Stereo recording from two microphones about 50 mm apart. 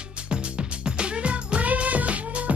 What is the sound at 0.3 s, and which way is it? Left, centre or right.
Music, centre.